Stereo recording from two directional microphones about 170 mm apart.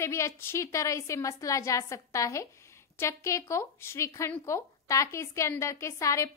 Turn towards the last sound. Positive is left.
turn(degrees=20)  # may be behind; listen again after turning